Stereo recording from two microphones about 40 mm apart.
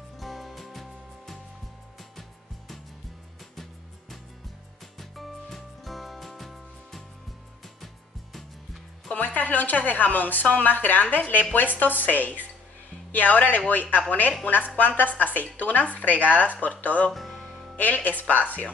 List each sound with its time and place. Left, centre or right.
0.2 s music: centre
4.9 s music: centre
9.1 s a woman's voice: left
17.1 s music: centre
17.7 s a woman's voice: left